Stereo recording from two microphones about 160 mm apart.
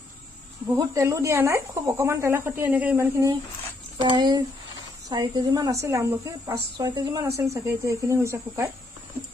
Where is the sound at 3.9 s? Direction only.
30° right (ahead or behind).